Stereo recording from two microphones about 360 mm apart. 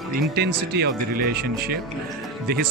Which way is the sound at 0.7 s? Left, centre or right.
Right.